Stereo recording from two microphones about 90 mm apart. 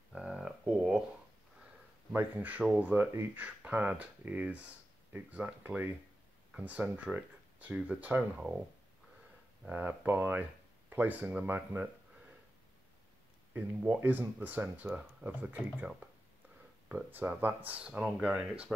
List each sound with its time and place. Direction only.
0.1 s a sound: 10° right (ahead or behind)
2.1 s speech: 20° right (ahead or behind)
9.7 s speech: 20° right (ahead or behind)
13.5 s speech: 20° right (ahead or behind)
16.9 s speech: 20° right (ahead or behind)